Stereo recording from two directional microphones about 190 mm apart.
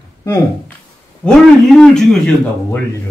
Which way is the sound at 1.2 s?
5° left (ahead or behind).